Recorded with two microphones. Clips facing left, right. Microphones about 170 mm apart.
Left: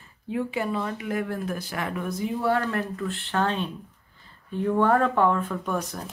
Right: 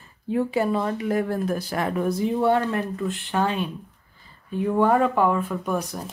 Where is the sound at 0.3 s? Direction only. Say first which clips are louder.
Right 5 dB; 40° right (ahead or behind).